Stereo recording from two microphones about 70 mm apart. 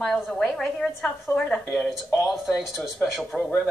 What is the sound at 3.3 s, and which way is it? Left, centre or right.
Speech, centre.